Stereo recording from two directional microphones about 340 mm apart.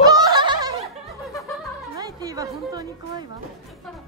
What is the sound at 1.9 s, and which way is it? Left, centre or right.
A woman's voice, centre.